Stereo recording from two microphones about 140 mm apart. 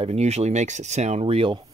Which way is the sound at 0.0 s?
50° right (ahead or behind).